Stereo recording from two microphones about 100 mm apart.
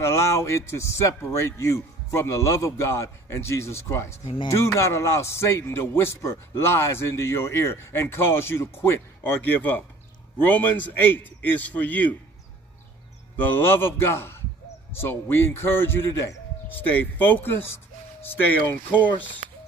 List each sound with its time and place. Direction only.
0.0 s a man's voice: 25° left (ahead or behind)
13.4 s a man's voice: 20° left (ahead or behind)
16.6 s a man's voice: 15° left (ahead or behind)